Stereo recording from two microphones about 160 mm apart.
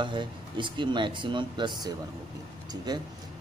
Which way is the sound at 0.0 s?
30° right (ahead or behind).